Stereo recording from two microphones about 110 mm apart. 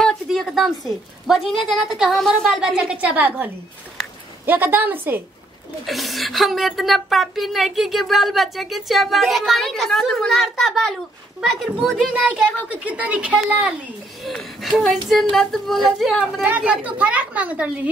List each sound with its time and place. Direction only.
0.0 s a woman's voice: centre (ahead or behind); by 3.4 s 15° right (ahead or behind)
4.5 s a woman's voice: 20° right (ahead or behind)
5.9 s a woman's voice: centre (ahead or behind)
12.1 s a woman's voice: 10° right (ahead or behind)
14.2 s a woman's voice: centre (ahead or behind)
16.4 s a woman's voice: 15° right (ahead or behind)